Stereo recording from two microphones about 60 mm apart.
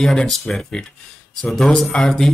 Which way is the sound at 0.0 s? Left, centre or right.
Centre.